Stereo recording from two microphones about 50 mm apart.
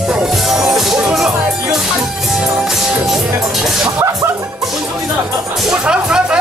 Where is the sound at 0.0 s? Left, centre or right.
Centre.